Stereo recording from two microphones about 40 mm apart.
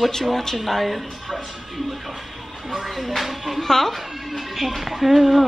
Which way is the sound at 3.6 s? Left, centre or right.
Centre.